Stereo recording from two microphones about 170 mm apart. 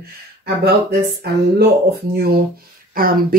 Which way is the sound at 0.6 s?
75° right (ahead or behind).